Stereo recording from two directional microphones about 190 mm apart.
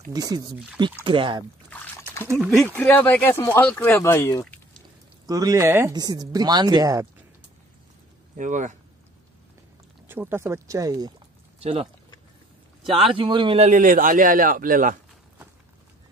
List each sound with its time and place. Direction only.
0.1 s speech: 20° right (ahead or behind)
2.3 s speech: centre (ahead or behind)
5.2 s speech: 20° right (ahead or behind)
8.4 s speech: 40° right (ahead or behind)
10.0 s speech: 10° right (ahead or behind)
11.6 s speech: 30° right (ahead or behind)
13.1 s speech: 25° right (ahead or behind)
13.7 s a man's voice: 45° right (ahead or behind)